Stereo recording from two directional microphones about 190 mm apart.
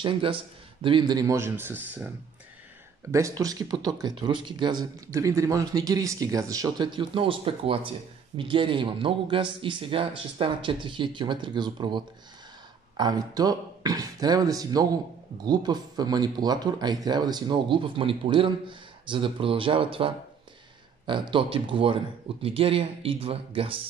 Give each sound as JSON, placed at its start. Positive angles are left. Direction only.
{"t": 0.0, "sound": "speech", "side_deg": -30}
{"t": 21.1, "sound": "speech", "side_deg": -25}